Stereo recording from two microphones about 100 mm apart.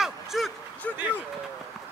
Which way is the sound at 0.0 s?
5° right (ahead or behind).